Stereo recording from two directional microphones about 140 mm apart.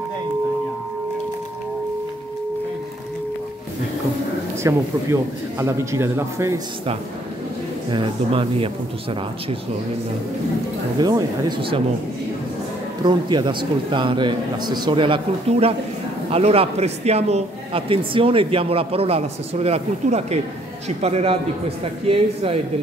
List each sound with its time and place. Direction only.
4.6 s a man's voice: 20° right (ahead or behind)
7.9 s a man's voice: 35° right (ahead or behind)
11.0 s a man's voice: 30° right (ahead or behind)
13.0 s a man's voice: 30° right (ahead or behind)